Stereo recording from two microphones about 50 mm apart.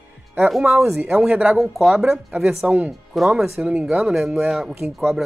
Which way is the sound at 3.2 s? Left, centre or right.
Centre.